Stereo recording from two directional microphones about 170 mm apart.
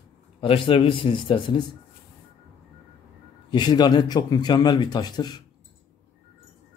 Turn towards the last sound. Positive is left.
turn(degrees=25)  # may be behind; listen again after turning